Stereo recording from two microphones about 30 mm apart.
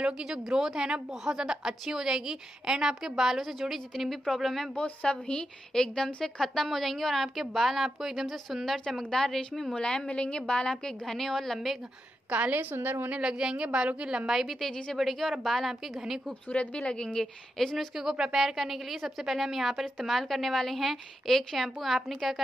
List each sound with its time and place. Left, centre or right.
0.2 s a woman's voice: centre
2.9 s a woman's voice: centre
4.7 s a woman's voice: left
6.4 s a woman's voice: centre
9.1 s a woman's voice: centre
9.7 s a woman's voice: left
11.1 s a woman's voice: centre
12.3 s a woman's voice: right
13.2 s a woman's voice: right
14.2 s a woman's voice: centre
16.5 s speech: left
17.6 s a woman's voice: centre
17.9 s a woman's voice: centre
18.4 s a woman's voice: centre